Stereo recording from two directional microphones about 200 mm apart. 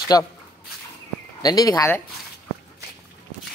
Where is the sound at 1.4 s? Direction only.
20° left (ahead or behind).